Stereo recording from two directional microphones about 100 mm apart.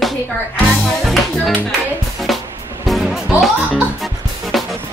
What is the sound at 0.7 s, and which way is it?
Music, centre (ahead or behind).